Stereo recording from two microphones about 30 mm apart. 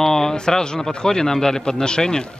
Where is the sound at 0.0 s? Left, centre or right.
Centre.